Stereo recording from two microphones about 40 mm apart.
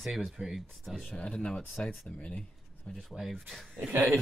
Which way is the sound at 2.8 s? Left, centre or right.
Centre.